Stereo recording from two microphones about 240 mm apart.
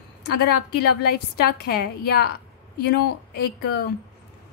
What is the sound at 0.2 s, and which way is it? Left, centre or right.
A woman's voice, left.